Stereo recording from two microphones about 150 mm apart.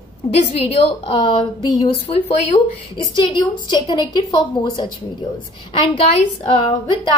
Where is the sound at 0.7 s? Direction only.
35° left (ahead or behind).